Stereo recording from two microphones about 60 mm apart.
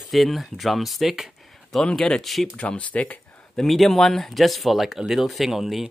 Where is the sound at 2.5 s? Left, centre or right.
Left.